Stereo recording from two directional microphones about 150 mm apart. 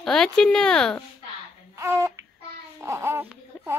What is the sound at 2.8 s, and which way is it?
Speech, 15° right (ahead or behind).